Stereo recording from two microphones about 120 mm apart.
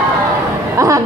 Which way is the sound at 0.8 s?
25° right (ahead or behind).